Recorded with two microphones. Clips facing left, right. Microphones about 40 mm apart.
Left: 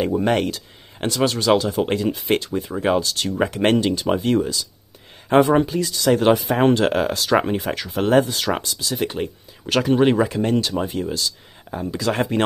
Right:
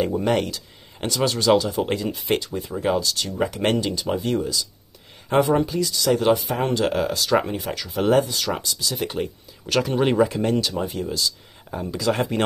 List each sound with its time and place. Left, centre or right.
0.0 s speech: centre
1.1 s speech: centre
2.4 s speech: left
6.3 s speech: left
7.5 s speech: left
8.9 s speech: centre